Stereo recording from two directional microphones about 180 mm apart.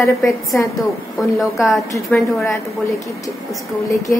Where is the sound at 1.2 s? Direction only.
Centre (ahead or behind).